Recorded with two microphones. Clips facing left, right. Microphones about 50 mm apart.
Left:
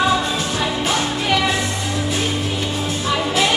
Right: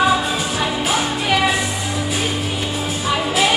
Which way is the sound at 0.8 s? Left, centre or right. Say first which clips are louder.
Right 1 dB; centre.